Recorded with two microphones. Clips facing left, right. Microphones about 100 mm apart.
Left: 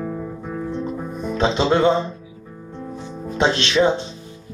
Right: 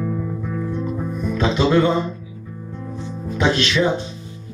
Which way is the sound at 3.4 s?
25° left (ahead or behind).